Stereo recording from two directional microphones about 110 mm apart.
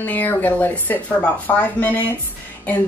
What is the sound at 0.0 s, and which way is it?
A woman's voice, 15° left (ahead or behind).